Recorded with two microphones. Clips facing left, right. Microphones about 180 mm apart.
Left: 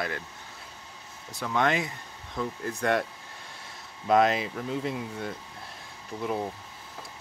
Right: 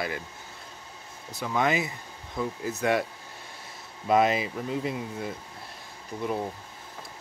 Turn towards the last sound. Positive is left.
turn(degrees=0)  # may be behind; listen again after turning